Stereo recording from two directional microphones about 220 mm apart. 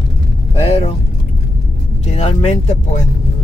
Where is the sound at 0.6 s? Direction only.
30° left (ahead or behind).